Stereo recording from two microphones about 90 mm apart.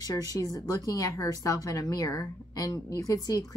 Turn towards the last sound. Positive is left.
turn(degrees=45)  # may be behind; listen again after turning